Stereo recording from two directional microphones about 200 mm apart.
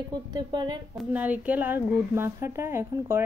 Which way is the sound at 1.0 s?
10° right (ahead or behind).